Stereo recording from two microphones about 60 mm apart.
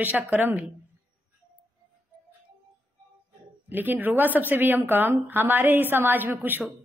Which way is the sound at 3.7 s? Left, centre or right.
Right.